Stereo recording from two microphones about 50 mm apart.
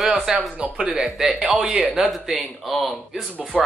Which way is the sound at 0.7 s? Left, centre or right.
Centre.